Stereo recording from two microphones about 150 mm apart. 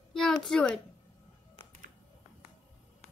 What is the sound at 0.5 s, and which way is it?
Speech, 5° left (ahead or behind).